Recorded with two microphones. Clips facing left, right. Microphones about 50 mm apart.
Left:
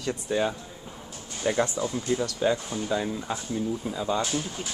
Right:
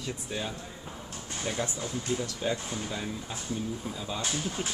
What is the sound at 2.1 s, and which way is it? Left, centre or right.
Speech, left.